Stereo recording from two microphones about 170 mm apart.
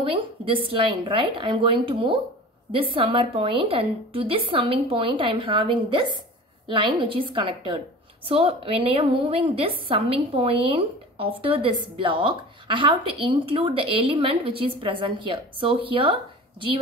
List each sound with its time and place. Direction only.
0.0 s a woman's voice: 30° right (ahead or behind)